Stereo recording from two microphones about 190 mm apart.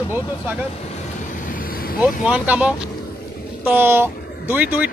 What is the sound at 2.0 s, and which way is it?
Speech, 5° right (ahead or behind).